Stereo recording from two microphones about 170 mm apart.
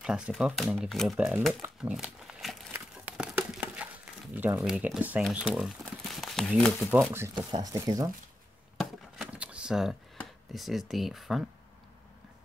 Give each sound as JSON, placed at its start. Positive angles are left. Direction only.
{"t": 0.0, "sound": "speech", "side_deg": -5}
{"t": 1.8, "sound": "a sound", "side_deg": -5}
{"t": 5.3, "sound": "speech", "side_deg": -5}
{"t": 6.9, "sound": "speech", "side_deg": -10}
{"t": 8.7, "sound": "a sound", "side_deg": -5}
{"t": 10.1, "sound": "speech", "side_deg": 0}